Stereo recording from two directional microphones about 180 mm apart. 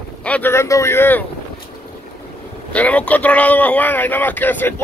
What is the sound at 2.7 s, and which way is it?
Speech, 10° left (ahead or behind).